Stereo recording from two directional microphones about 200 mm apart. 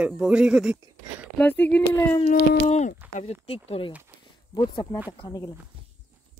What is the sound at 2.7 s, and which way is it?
Speech, 35° left (ahead or behind).